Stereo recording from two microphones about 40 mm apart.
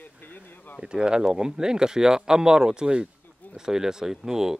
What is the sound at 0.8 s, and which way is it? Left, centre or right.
Speech, right.